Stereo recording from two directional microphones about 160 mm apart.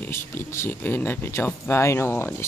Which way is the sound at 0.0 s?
15° left (ahead or behind).